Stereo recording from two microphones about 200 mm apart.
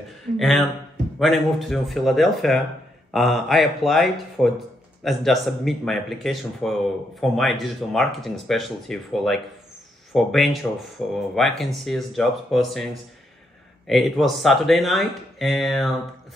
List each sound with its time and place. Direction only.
0.4 s speech: centre (ahead or behind)
13.8 s speech: centre (ahead or behind)